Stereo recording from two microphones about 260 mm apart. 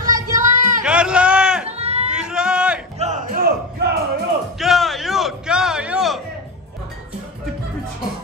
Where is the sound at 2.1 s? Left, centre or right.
Centre.